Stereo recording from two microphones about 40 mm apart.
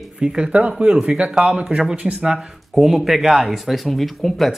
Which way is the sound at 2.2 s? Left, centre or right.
Centre.